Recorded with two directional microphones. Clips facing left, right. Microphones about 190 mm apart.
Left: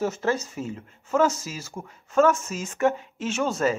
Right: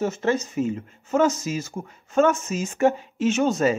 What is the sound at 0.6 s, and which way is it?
Speech, 10° right (ahead or behind).